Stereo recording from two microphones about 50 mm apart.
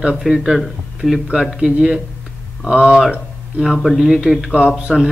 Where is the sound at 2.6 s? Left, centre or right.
Right.